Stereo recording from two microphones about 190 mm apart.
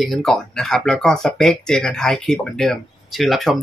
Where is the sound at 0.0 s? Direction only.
Centre (ahead or behind).